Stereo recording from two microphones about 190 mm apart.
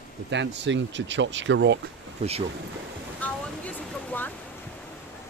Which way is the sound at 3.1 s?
10° left (ahead or behind).